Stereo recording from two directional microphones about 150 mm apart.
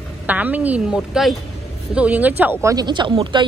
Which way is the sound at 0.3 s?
10° right (ahead or behind).